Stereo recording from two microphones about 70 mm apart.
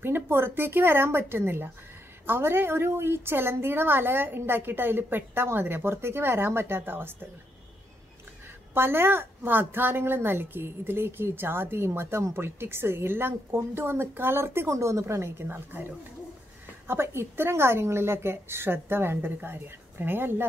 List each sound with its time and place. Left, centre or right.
0.0 s a woman's voice: right
8.7 s a woman's voice: right